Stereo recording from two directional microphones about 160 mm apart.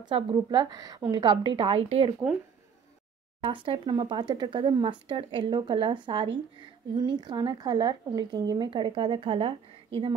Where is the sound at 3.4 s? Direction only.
35° right (ahead or behind).